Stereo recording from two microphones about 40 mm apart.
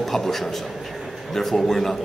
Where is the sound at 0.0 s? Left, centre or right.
Centre.